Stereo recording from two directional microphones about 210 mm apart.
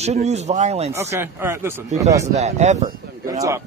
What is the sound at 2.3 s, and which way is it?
Speech, 30° right (ahead or behind).